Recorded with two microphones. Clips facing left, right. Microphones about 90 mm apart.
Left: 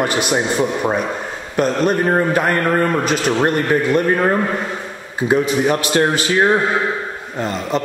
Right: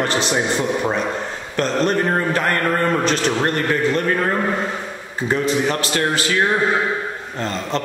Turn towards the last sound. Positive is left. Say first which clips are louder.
# left 3 dB
turn(degrees=10)  # may be behind; listen again after turning